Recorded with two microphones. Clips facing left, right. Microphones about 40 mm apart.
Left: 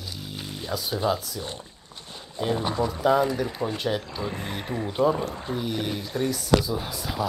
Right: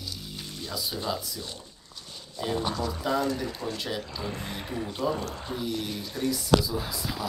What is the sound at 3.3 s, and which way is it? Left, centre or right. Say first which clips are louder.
Speech: left 4 dB; left.